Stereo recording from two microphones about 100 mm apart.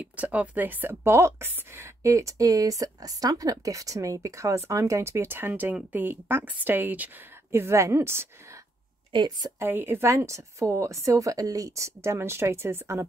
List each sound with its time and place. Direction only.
0.0 s speech: 15° right (ahead or behind)
9.1 s a woman's voice: 45° right (ahead or behind)
9.6 s speech: 20° right (ahead or behind)